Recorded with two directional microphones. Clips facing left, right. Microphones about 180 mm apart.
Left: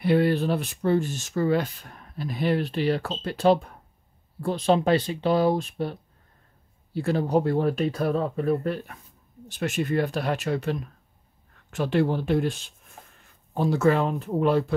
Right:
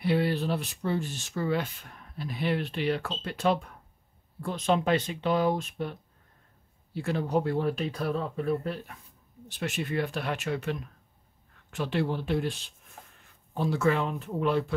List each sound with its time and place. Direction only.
0.0 s speech: 50° left (ahead or behind)